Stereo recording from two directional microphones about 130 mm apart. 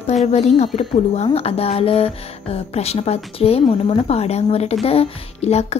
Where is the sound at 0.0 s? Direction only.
60° left (ahead or behind).